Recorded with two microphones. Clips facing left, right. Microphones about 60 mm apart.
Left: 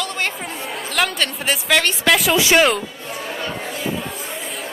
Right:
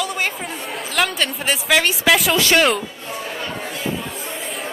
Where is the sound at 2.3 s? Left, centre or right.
Centre.